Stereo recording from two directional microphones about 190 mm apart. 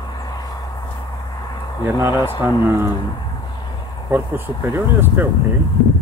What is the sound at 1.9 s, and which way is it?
Speech, 15° right (ahead or behind).